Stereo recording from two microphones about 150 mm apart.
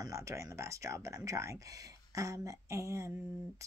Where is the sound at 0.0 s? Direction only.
20° right (ahead or behind).